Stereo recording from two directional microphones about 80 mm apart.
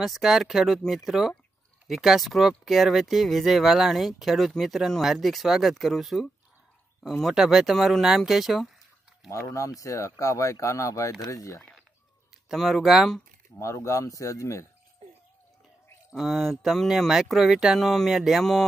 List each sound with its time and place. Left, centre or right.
0.0 s speech: centre
9.3 s speech: left
12.4 s speech: centre
13.6 s speech: left
16.1 s speech: centre